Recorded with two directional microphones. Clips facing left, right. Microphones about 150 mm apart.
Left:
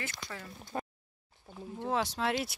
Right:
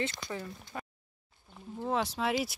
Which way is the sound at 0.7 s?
35° left (ahead or behind).